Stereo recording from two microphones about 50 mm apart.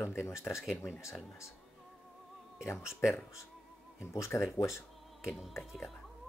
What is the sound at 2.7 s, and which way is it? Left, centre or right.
Speech, centre.